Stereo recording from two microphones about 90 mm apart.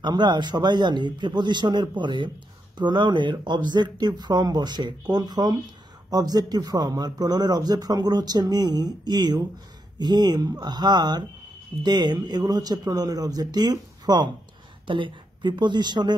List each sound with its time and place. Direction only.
0.0 s speech: 55° right (ahead or behind)
14.9 s speech: 65° right (ahead or behind)